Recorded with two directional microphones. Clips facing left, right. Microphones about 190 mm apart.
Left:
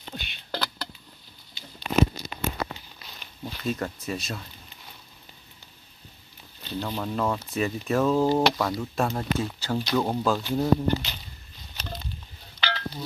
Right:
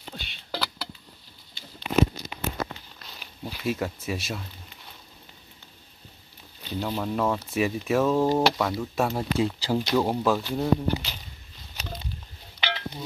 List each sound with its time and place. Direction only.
0.1 s a sound: 5° right (ahead or behind)
2.6 s a sound: 50° right (ahead or behind)
3.2 s speech: 5° right (ahead or behind)
6.6 s speech: 10° right (ahead or behind)
9.4 s speech: 15° right (ahead or behind)
12.5 s telephone dialing: 20° right (ahead or behind)